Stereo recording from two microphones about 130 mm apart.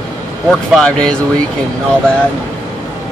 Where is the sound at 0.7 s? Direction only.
5° left (ahead or behind).